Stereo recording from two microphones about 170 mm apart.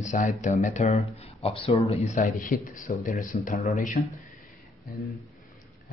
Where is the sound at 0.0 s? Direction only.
45° left (ahead or behind).